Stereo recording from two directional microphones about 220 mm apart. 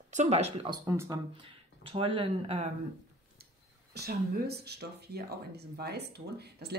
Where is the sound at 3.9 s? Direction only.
45° right (ahead or behind).